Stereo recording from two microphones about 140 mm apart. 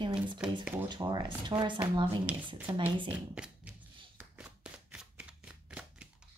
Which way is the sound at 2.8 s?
35° right (ahead or behind).